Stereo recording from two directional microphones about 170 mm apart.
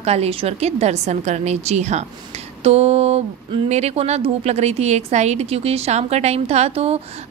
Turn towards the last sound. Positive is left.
turn(degrees=-35)  # may be behind; listen again after turning